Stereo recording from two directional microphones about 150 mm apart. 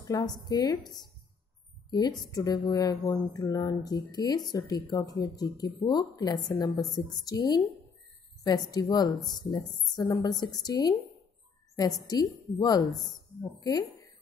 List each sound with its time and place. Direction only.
0.0 s a woman's voice: 25° left (ahead or behind)
8.7 s speech: 25° left (ahead or behind)